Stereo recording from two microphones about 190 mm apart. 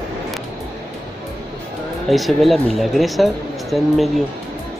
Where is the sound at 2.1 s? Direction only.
Centre (ahead or behind).